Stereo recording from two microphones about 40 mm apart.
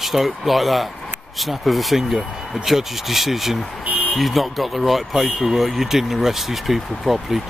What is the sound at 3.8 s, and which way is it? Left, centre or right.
Buzzer, right.